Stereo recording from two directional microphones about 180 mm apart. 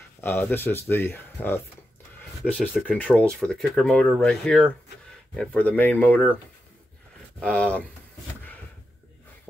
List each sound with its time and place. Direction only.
0.2 s speech: 10° left (ahead or behind)
2.1 s a sound: 10° left (ahead or behind)
2.7 s speech: centre (ahead or behind)
7.4 s speech: 5° left (ahead or behind)